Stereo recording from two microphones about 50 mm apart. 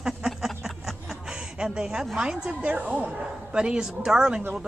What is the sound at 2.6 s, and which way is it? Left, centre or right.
Speech, right.